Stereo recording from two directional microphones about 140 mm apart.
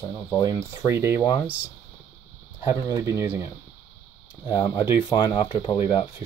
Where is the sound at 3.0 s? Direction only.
15° right (ahead or behind).